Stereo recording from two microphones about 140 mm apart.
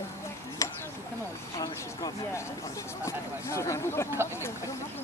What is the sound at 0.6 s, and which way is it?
Chop, 20° left (ahead or behind).